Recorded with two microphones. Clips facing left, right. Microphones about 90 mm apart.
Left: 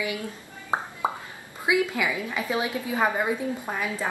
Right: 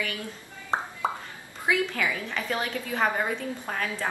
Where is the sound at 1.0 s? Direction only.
15° left (ahead or behind).